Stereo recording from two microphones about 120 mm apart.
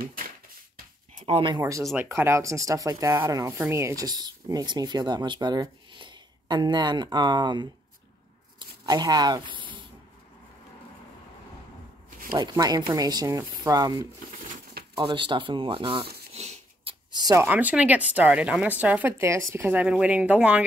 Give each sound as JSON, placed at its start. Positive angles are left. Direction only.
{"t": 1.2, "sound": "speech", "side_deg": -45}
{"t": 1.6, "sound": "speech", "side_deg": -25}
{"t": 12.4, "sound": "speech", "side_deg": -35}
{"t": 15.0, "sound": "speech", "side_deg": -40}
{"t": 16.3, "sound": "a sound", "side_deg": -65}
{"t": 17.1, "sound": "speech", "side_deg": -35}
{"t": 17.4, "sound": "speech", "side_deg": -15}